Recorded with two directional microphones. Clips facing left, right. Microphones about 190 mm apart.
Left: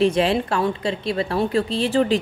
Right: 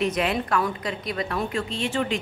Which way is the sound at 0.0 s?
30° left (ahead or behind).